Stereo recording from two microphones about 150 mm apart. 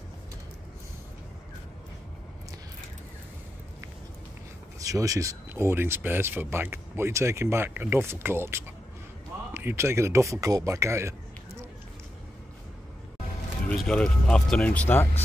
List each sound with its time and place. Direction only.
4.7 s speech: 20° right (ahead or behind)
13.7 s speech: 5° left (ahead or behind)